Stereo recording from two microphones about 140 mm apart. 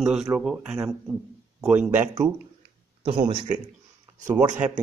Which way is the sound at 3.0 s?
35° right (ahead or behind).